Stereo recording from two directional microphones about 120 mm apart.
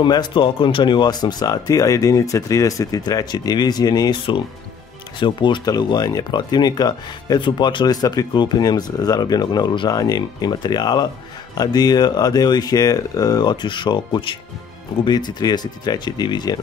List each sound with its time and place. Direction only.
0.0 s speech: 40° left (ahead or behind)
5.2 s speech: 40° left (ahead or behind)